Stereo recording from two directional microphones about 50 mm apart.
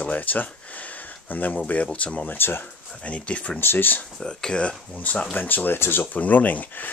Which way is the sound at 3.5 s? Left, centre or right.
Left.